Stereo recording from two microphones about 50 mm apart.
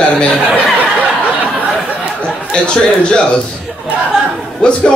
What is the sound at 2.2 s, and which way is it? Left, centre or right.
Speech, centre.